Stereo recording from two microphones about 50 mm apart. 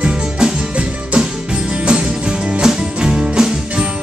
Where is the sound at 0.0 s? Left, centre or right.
Centre.